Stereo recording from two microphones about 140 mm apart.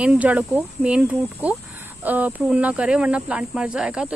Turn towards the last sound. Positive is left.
turn(degrees=-5)  # may be behind; listen again after turning